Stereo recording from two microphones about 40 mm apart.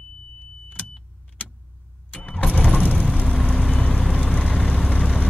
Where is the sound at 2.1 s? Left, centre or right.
Left.